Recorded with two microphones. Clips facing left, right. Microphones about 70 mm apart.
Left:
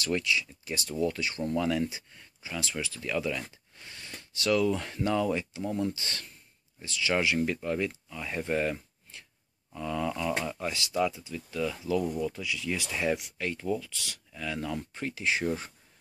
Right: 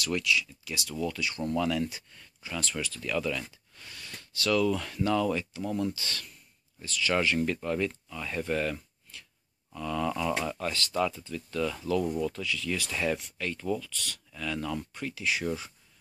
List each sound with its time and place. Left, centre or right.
0.0 s speech: left; by 5.9 s centre
5.9 s speech: left